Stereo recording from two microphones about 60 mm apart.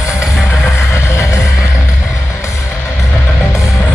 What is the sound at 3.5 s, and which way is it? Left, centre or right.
Music, left.